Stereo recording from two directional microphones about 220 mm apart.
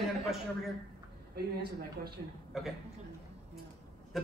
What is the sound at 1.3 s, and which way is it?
Speech, 45° right (ahead or behind).